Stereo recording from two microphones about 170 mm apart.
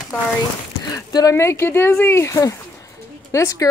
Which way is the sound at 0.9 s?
20° left (ahead or behind).